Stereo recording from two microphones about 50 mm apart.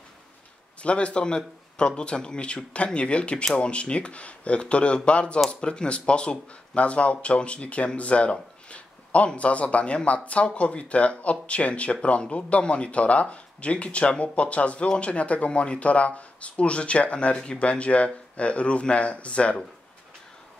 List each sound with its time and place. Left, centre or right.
0.8 s speech: left